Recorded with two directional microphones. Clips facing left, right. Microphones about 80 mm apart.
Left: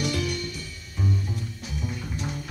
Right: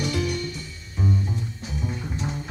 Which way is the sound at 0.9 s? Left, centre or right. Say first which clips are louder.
Right 3 dB; right.